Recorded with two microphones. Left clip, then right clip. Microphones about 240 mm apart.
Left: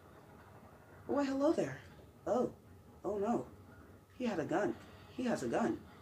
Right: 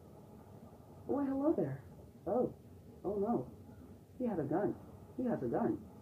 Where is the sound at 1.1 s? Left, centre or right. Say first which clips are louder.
Left 2 dB; left.